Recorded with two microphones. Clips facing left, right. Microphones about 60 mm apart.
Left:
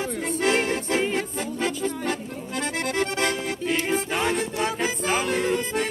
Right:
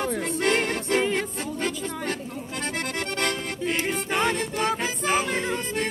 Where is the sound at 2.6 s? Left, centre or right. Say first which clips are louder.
Left 4 dB; left.